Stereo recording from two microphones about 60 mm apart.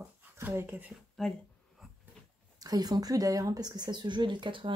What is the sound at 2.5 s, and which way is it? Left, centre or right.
A woman's voice, right.